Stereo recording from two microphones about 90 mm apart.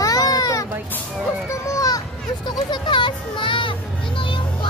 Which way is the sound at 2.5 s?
55° left (ahead or behind).